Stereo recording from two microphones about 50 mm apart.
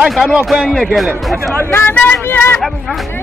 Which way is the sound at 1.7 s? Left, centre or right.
Left.